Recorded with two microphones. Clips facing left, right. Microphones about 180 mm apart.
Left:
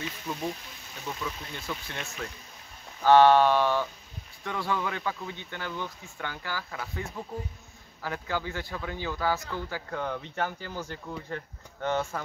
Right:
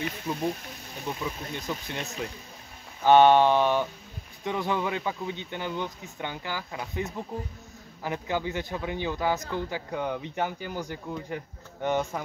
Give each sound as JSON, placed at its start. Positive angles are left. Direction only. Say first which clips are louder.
{"t": 1.0, "sound": "a man's voice", "louder": "right 3 dB", "side_deg": -20}